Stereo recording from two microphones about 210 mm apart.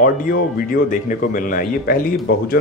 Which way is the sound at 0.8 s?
40° left (ahead or behind).